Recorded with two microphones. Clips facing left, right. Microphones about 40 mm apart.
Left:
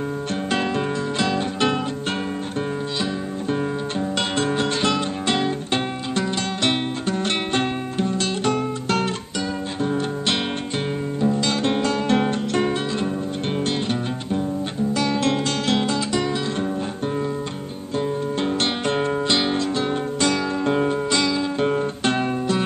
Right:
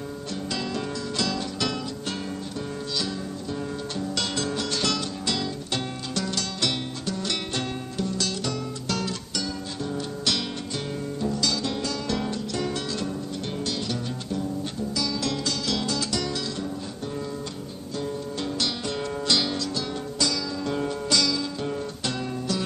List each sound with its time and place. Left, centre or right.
0.5 s music: left
4.0 s music: left
15.0 s guitar: left
17.9 s music: left
21.5 s guitar: left